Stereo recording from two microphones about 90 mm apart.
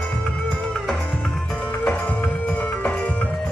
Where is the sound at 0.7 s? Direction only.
5° left (ahead or behind).